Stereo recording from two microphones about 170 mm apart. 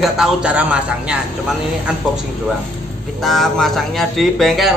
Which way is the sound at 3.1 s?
Centre (ahead or behind).